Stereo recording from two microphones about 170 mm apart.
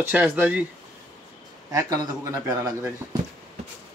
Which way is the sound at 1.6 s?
20° right (ahead or behind).